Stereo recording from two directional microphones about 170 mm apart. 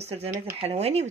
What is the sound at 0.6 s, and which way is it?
Cutlery, 40° right (ahead or behind).